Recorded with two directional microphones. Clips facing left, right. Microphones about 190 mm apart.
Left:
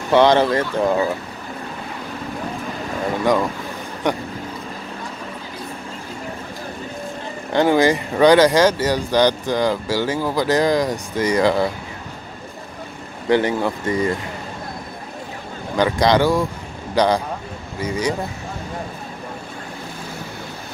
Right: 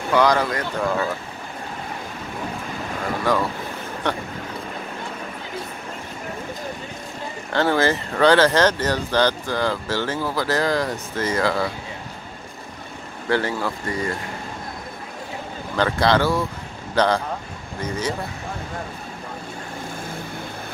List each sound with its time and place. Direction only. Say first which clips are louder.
0.1 s speech: left 5 dB; 25° left (ahead or behind)
4.1 s speech: left 4 dB; 15° left (ahead or behind)
7.5 s speech: left 4 dB; 15° left (ahead or behind)
13.3 s speech: left 5 dB; 20° left (ahead or behind)
15.7 s speech: left 3 dB; 15° left (ahead or behind)